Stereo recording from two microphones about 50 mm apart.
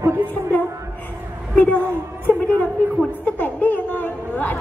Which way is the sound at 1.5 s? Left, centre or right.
Left.